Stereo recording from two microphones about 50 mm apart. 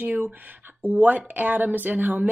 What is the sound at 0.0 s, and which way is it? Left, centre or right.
Speech, right.